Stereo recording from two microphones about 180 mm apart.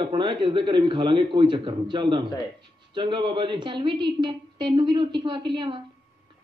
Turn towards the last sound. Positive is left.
turn(degrees=-25)  # may be behind; listen again after turning